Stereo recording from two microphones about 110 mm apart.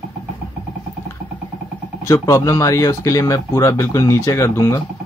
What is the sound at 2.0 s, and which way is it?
A man's voice, 25° left (ahead or behind).